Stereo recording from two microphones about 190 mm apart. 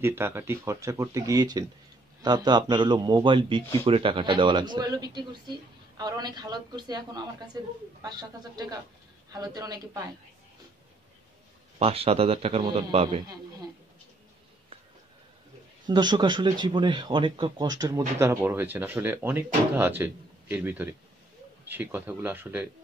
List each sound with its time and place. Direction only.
0.0 s speech: 15° right (ahead or behind)
11.8 s a man's voice: 30° right (ahead or behind)
15.9 s speech: 25° right (ahead or behind)